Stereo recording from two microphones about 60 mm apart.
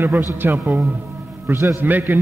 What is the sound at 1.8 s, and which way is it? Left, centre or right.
Speech, right.